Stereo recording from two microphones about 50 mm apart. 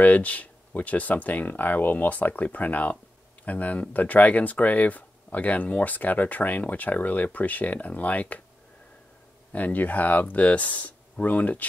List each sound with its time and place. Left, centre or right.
0.0 s speech: left
9.5 s speech: left